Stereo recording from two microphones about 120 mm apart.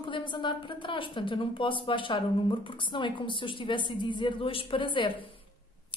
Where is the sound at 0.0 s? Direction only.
40° left (ahead or behind).